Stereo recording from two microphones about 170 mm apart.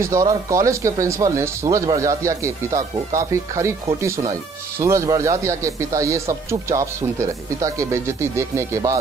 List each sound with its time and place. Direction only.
0.0 s speech: 20° right (ahead or behind)